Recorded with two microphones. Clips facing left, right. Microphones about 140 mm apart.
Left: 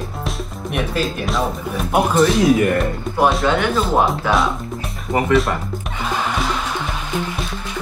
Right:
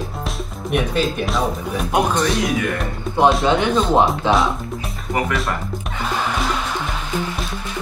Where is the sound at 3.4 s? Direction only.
20° right (ahead or behind).